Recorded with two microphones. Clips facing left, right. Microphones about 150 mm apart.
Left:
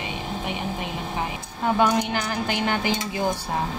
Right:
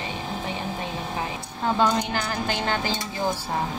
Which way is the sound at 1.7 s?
15° left (ahead or behind).